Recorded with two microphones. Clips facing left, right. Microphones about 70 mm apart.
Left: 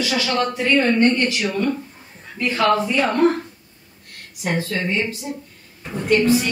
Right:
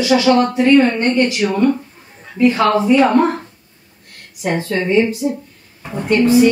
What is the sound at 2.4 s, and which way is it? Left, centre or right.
Speech, right.